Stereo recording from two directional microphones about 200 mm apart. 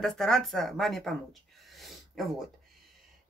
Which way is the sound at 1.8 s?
Centre (ahead or behind).